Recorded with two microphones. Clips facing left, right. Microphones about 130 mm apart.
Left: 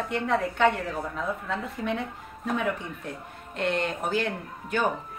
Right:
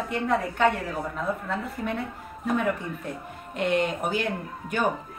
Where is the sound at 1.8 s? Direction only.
5° left (ahead or behind).